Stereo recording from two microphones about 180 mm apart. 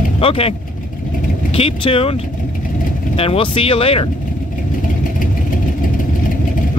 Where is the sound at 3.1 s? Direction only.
30° left (ahead or behind).